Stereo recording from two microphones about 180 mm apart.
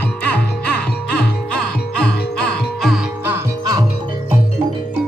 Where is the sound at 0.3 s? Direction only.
10° left (ahead or behind).